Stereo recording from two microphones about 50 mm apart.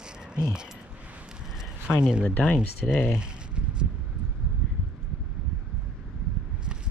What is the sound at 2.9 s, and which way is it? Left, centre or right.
Speech, left.